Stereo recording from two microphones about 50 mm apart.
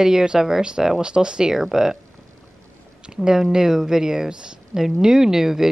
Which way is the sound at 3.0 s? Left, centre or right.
Centre.